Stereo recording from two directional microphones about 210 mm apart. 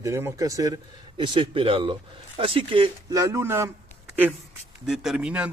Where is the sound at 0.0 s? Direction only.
15° right (ahead or behind).